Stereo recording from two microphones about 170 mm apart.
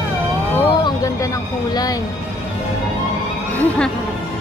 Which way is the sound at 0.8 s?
20° left (ahead or behind).